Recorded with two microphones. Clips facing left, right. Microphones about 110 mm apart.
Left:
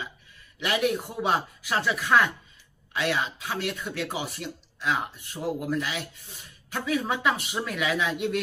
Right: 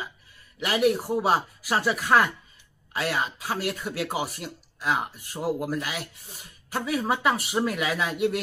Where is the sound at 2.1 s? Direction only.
30° right (ahead or behind).